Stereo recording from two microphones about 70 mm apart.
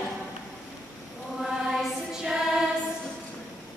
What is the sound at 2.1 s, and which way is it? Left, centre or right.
Music, centre.